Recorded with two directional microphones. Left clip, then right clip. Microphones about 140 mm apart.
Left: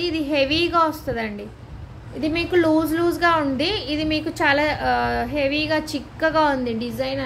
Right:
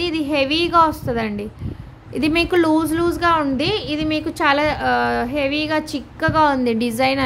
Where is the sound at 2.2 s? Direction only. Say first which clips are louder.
Right 4 dB; 50° right (ahead or behind).